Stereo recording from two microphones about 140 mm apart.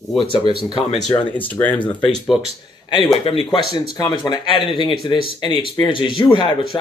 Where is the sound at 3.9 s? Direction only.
30° left (ahead or behind).